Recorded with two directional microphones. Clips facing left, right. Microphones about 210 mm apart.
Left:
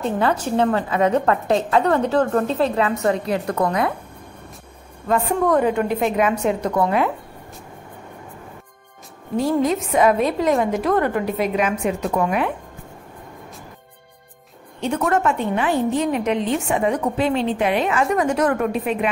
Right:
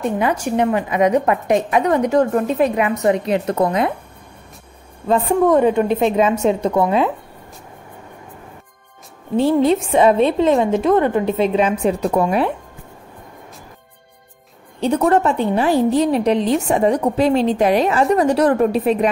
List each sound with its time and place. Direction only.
0.0 s a woman's voice: 15° right (ahead or behind)
5.0 s a woman's voice: 25° right (ahead or behind)
9.4 s a woman's voice: 30° right (ahead or behind)
14.8 s a woman's voice: 30° right (ahead or behind)